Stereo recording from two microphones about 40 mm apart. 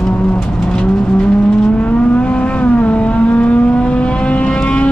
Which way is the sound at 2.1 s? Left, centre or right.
Left.